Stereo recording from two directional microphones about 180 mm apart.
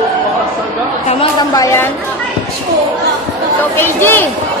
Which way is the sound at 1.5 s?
15° left (ahead or behind).